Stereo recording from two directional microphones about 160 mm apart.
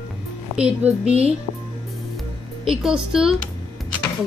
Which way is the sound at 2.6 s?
5° right (ahead or behind).